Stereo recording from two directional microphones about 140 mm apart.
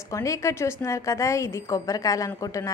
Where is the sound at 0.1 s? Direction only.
20° left (ahead or behind).